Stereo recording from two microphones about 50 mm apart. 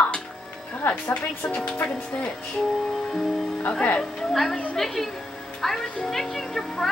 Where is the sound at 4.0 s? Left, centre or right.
Centre.